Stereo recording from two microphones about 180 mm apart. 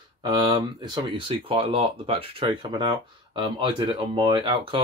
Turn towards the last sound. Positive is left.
turn(degrees=-30)  # may be behind; listen again after turning